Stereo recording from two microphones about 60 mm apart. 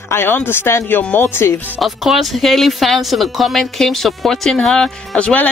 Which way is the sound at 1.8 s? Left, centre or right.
Centre.